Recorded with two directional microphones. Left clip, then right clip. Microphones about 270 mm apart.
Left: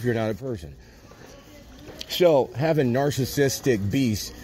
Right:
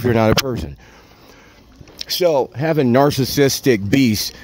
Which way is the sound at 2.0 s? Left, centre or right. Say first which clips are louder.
Right 3 dB; right.